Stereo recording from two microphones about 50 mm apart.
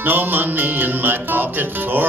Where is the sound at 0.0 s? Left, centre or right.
Right.